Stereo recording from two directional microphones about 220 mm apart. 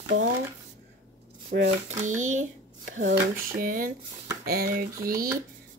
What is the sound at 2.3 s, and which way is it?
Speech, 35° right (ahead or behind).